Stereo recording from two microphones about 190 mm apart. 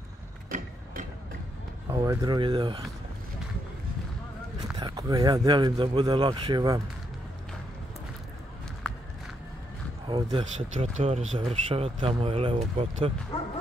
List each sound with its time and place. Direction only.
0.5 s a sound: 45° right (ahead or behind)
1.9 s speech: 25° right (ahead or behind)
4.7 s speech: 20° right (ahead or behind)
10.0 s speech: 25° right (ahead or behind)
11.0 s speech: 35° right (ahead or behind)